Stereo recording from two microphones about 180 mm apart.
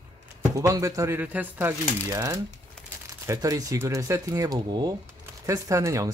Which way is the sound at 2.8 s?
5° left (ahead or behind).